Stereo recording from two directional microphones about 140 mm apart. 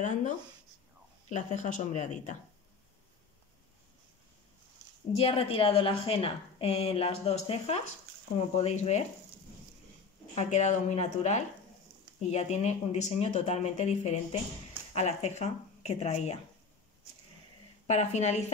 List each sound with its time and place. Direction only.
1.3 s speech: 60° left (ahead or behind)
5.1 s a woman's voice: 40° left (ahead or behind)
10.3 s speech: 55° left (ahead or behind)
17.8 s speech: 55° left (ahead or behind)